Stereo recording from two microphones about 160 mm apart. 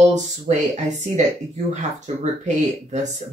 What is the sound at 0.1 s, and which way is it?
Speech, 45° right (ahead or behind).